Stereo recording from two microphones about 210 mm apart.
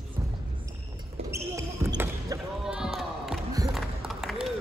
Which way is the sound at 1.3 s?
15° right (ahead or behind).